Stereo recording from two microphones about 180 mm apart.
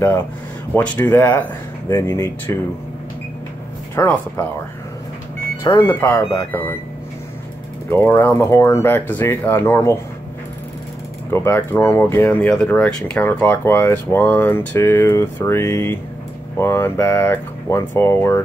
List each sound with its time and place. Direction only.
0.7 s speech: 10° left (ahead or behind)
3.9 s speech: 15° left (ahead or behind)
5.6 s speech: 15° left (ahead or behind)
7.9 s speech: 10° left (ahead or behind)
11.2 s speech: 10° left (ahead or behind)